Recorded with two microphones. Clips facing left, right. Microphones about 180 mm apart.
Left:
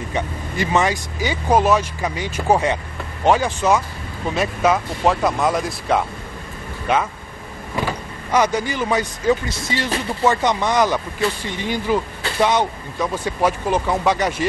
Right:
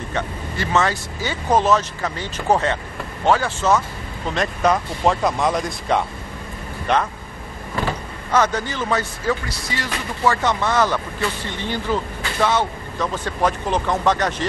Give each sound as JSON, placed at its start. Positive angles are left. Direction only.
{"t": 0.1, "sound": "speech", "side_deg": 15}
{"t": 8.3, "sound": "speech", "side_deg": 10}